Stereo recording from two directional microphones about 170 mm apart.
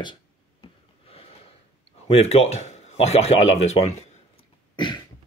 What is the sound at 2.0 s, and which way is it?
Speech, 35° left (ahead or behind).